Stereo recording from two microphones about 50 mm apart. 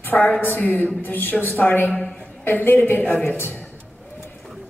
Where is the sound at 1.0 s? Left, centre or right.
Left.